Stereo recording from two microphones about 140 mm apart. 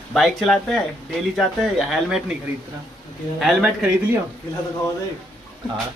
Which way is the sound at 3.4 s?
5° right (ahead or behind).